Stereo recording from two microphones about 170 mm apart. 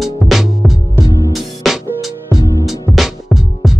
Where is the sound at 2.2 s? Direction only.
20° right (ahead or behind).